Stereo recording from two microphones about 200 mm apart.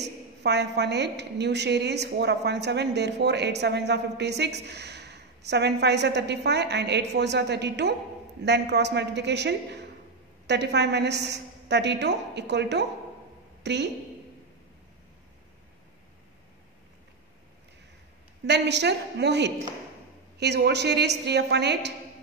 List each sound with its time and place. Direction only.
0.0 s a woman's voice: 55° right (ahead or behind)
13.6 s a sound: 60° right (ahead or behind)
18.5 s a woman's voice: 60° right (ahead or behind)